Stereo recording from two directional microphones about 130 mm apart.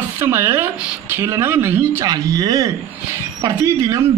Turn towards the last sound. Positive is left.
turn(degrees=-25)  # may be behind; listen again after turning